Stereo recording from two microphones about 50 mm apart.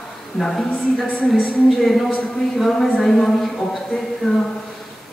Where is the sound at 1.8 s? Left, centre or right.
Centre.